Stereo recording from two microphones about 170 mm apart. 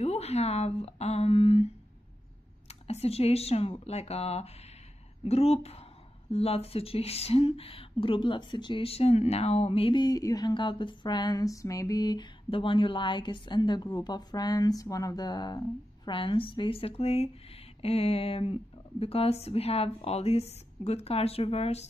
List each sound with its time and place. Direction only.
0.0 s speech: 40° left (ahead or behind)
2.7 s speech: 35° left (ahead or behind)